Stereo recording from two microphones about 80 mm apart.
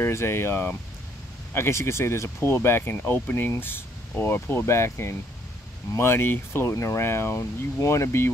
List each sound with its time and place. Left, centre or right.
0.0 s speech: left